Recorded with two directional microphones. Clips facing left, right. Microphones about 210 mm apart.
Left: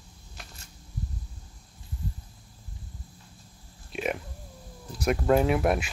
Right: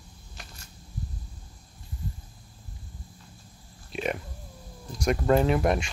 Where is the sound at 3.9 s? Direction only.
Centre (ahead or behind).